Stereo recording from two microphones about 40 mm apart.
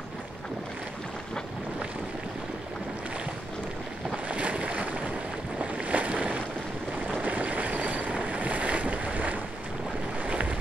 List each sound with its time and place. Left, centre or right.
4.3 s boat: right